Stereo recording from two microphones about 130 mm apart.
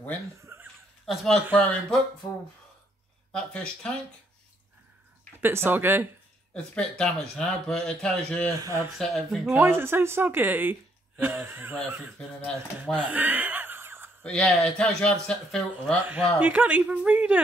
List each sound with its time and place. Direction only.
0.4 s a sound: 20° right (ahead or behind)
1.0 s speech: centre (ahead or behind)
3.3 s speech: 5° left (ahead or behind)
5.4 s speech: 20° right (ahead or behind)
6.5 s speech: 5° left (ahead or behind)
8.5 s speech: 25° right (ahead or behind)
8.9 s speech: centre (ahead or behind)
9.6 s speech: 15° right (ahead or behind)
12.0 s speech: 5° left (ahead or behind)
12.9 s a sound: 15° right (ahead or behind)
14.2 s speech: 5° left (ahead or behind)
16.1 s speech: 15° right (ahead or behind)